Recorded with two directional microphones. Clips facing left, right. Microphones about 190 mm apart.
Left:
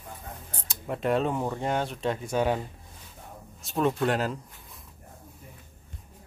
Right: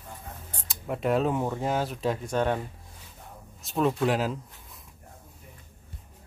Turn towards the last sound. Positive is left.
turn(degrees=0)  # may be behind; listen again after turning